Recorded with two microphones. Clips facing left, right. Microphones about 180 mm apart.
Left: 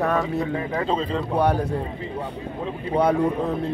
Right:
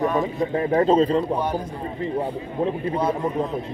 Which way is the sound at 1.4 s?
70° left (ahead or behind).